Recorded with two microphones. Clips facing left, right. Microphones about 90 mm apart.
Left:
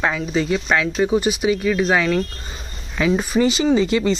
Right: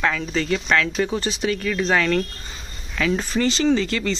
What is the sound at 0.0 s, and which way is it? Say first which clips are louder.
Speech: left 2 dB; 15° left (ahead or behind).